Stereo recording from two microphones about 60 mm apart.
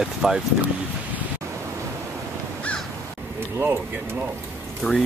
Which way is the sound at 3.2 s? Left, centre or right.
Right.